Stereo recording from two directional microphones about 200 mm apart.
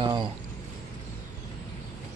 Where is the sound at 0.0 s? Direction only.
20° right (ahead or behind).